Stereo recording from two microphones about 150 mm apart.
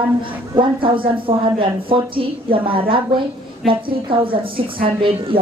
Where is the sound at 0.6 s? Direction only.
35° right (ahead or behind).